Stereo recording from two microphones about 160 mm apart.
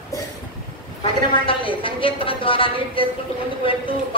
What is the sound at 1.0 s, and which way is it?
A woman's voice, 35° left (ahead or behind).